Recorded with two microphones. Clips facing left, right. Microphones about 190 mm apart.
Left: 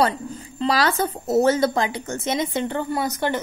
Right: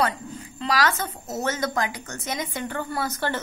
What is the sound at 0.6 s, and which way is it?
A woman's voice, 30° left (ahead or behind).